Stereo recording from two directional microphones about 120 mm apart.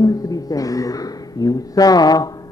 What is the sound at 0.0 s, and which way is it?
Speech, 30° left (ahead or behind).